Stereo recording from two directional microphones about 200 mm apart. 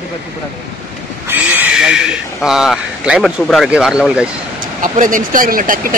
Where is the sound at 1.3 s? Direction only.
10° right (ahead or behind).